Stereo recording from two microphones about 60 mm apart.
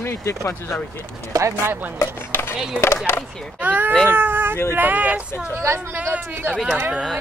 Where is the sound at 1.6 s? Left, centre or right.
Right.